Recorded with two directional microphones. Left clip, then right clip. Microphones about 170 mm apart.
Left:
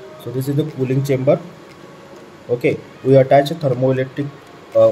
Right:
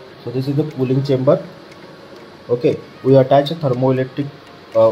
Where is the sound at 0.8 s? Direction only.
5° right (ahead or behind).